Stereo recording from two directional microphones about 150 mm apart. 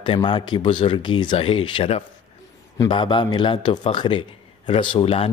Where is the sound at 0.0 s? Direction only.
35° left (ahead or behind).